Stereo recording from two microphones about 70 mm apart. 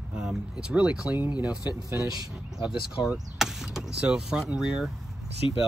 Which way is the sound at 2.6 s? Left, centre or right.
Centre.